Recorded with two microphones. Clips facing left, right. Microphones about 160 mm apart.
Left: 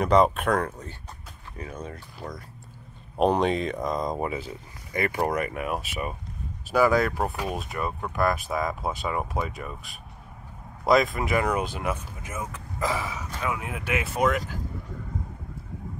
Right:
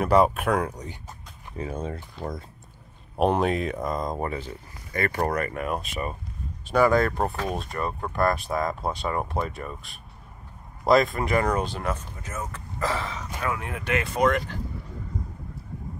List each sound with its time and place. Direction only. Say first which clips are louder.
0.0 s speech: even; 5° right (ahead or behind)
1.6 s speech: right 5 dB; 30° right (ahead or behind)
3.2 s speech: even; 5° right (ahead or behind)